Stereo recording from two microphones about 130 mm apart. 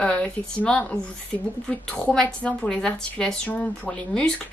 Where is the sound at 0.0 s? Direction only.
10° left (ahead or behind).